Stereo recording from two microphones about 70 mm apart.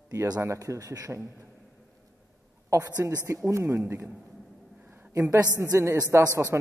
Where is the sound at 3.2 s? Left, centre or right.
Right.